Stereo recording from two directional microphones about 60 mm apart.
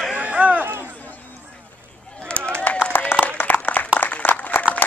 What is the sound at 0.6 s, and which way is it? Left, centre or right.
Speech, right.